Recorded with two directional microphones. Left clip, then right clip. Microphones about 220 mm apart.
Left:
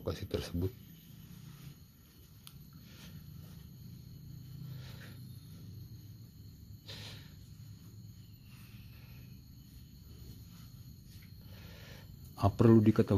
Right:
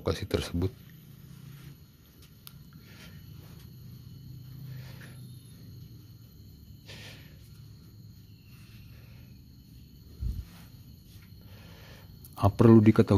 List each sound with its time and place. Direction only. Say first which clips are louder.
0.0 s speech: right 8 dB; 20° right (ahead or behind)
6.9 s a sound: right 1 dB; 5° right (ahead or behind)
12.4 s speech: right 6 dB; 10° right (ahead or behind)